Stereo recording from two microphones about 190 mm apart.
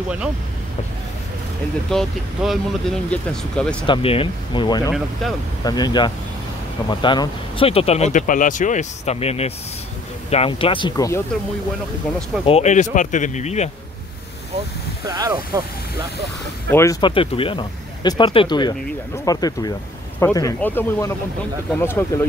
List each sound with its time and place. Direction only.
1.9 s speech: centre (ahead or behind)
3.8 s speech: 30° left (ahead or behind)
12.4 s speech: 35° left (ahead or behind)
15.0 s speech: 20° right (ahead or behind)
16.7 s speech: 15° left (ahead or behind)